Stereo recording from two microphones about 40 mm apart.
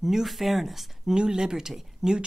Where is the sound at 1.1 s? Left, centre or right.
Centre.